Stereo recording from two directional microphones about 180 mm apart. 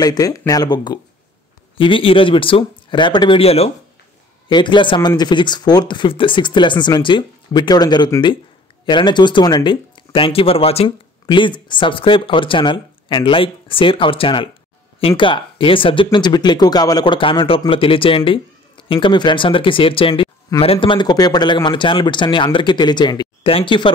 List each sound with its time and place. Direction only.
0.0 s speech: 20° left (ahead or behind)